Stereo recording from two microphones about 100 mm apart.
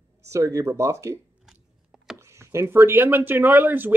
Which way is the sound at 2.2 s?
30° right (ahead or behind).